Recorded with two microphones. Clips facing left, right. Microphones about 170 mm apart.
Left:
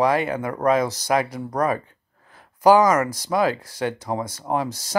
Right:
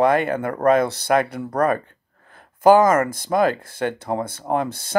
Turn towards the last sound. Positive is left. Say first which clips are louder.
# right 2 dB
turn(degrees=-55)  # may be behind; listen again after turning